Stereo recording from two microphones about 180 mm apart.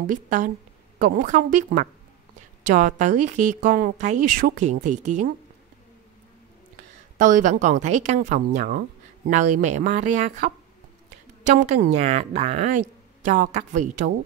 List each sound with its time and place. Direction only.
0.0 s a woman's voice: 45° right (ahead or behind)
7.2 s a woman's voice: 45° right (ahead or behind)
12.0 s a woman's voice: 35° right (ahead or behind)